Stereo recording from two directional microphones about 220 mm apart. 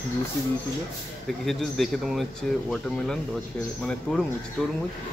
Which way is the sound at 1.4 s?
Centre (ahead or behind).